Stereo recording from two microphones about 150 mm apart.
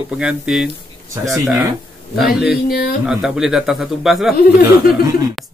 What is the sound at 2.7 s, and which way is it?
Speech, 90° left.